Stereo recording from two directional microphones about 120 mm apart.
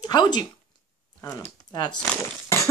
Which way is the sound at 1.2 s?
25° left (ahead or behind).